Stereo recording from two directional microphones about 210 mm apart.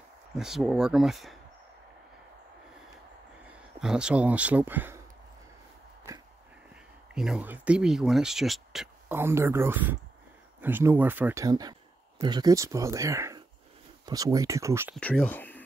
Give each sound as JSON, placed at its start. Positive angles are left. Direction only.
{"t": 0.4, "sound": "speech", "side_deg": 0}
{"t": 3.4, "sound": "speech", "side_deg": -5}
{"t": 7.2, "sound": "speech", "side_deg": -5}
{"t": 15.0, "sound": "speech", "side_deg": 5}